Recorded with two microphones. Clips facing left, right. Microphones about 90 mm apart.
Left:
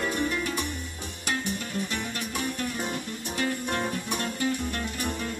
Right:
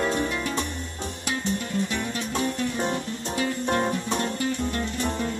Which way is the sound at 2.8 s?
25° right (ahead or behind).